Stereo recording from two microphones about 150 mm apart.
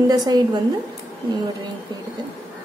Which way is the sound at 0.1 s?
25° right (ahead or behind).